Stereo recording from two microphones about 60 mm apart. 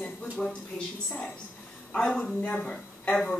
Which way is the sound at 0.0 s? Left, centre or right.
Centre.